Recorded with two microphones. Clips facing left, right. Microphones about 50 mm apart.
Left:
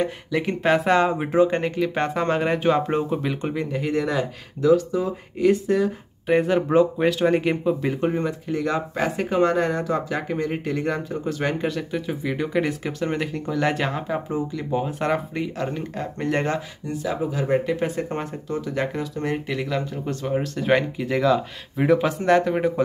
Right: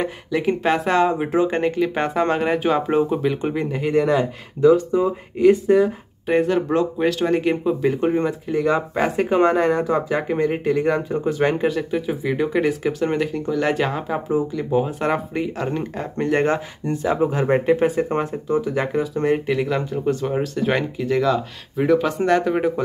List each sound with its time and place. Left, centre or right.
0.0 s speech: centre
4.6 s speech: right
5.4 s speech: centre
6.4 s speech: centre
16.8 s speech: right
17.8 s speech: centre